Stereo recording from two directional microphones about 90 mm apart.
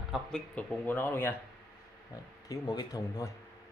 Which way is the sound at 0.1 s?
5° right (ahead or behind).